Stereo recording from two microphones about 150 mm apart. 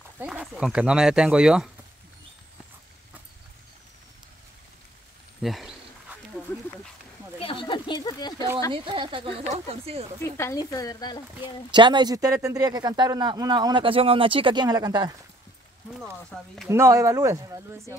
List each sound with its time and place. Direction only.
0.2 s speech: 5° right (ahead or behind)
5.4 s a sound: centre (ahead or behind)
7.3 s a sound: 35° left (ahead or behind)
8.7 s speech: 30° right (ahead or behind)
9.4 s speech: 45° right (ahead or behind)
10.2 s speech: 15° left (ahead or behind)
11.7 s speech: 30° right (ahead or behind)
16.0 s speech: 5° left (ahead or behind)
16.6 s speech: 20° right (ahead or behind)